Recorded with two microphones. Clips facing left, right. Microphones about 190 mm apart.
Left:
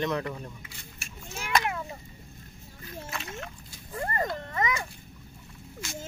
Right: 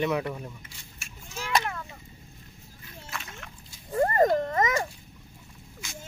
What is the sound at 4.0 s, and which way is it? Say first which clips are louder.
Speech: right 10 dB; 45° right (ahead or behind).